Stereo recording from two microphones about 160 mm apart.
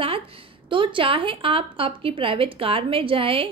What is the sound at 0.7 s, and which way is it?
A woman's voice, 30° right (ahead or behind).